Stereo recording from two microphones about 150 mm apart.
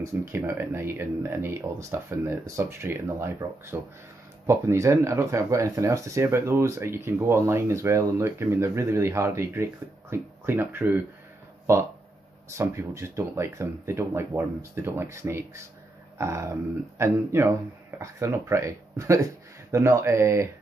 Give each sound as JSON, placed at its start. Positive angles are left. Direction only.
{"t": 0.0, "sound": "speech", "side_deg": -20}
{"t": 12.4, "sound": "speech", "side_deg": -20}